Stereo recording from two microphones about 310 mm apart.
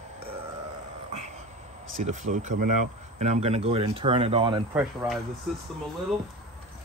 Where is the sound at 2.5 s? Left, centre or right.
Right.